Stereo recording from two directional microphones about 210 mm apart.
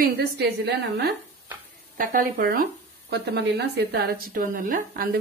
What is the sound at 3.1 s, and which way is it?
A woman's voice, 55° right (ahead or behind).